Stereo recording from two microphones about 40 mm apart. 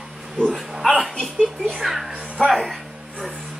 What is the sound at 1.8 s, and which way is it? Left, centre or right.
Sheep, centre.